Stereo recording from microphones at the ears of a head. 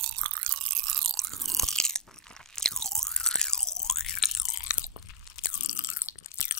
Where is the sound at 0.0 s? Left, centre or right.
Right.